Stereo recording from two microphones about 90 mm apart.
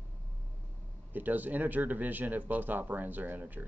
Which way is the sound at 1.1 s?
20° right (ahead or behind).